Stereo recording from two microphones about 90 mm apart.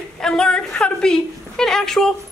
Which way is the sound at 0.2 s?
10° left (ahead or behind).